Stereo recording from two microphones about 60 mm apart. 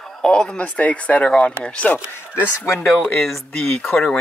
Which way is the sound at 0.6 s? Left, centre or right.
Left.